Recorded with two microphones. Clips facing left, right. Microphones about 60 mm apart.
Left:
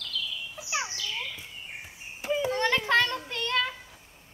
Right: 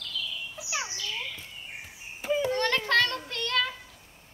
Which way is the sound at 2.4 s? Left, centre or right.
Centre.